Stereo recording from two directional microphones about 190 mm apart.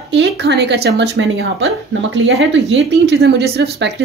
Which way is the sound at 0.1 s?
65° right (ahead or behind).